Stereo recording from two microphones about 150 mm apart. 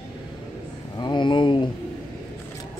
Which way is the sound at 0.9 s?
30° left (ahead or behind).